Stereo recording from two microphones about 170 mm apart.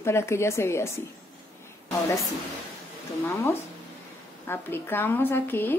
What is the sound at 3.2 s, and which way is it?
Speech, 15° left (ahead or behind).